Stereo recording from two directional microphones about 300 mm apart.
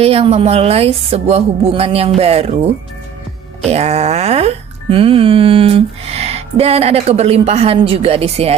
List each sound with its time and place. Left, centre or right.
0.0 s speech: centre
3.6 s speech: right